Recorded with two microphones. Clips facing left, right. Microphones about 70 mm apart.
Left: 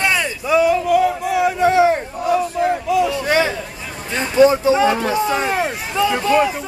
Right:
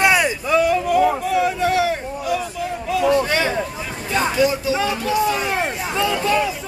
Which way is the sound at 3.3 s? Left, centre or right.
Centre.